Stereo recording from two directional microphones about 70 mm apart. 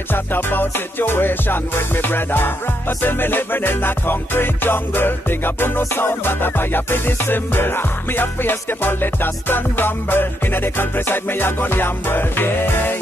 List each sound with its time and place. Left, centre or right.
0.1 s music: left